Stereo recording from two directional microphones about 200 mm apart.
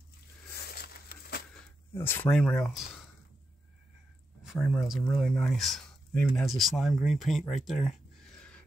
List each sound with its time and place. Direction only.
0.7 s a sound: 50° left (ahead or behind)
1.5 s speech: 10° left (ahead or behind)
4.4 s speech: centre (ahead or behind)